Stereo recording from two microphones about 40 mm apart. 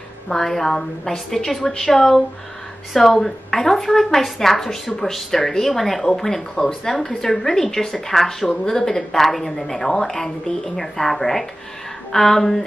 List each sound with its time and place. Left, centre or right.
0.3 s a woman's voice: centre
6.5 s a woman's voice: left